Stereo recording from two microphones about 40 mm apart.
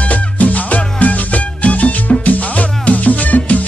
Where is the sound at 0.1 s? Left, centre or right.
Left.